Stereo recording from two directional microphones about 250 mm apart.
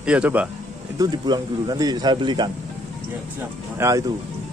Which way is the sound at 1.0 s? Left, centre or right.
Centre.